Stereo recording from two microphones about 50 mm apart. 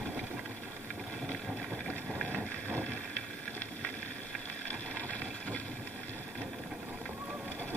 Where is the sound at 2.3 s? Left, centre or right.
Right.